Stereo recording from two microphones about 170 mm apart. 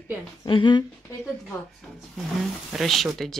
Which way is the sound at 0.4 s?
30° left (ahead or behind).